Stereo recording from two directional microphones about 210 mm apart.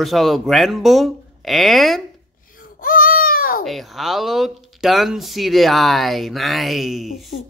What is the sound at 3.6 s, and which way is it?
Speech, centre (ahead or behind).